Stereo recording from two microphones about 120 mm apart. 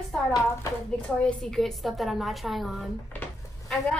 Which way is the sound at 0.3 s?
25° left (ahead or behind).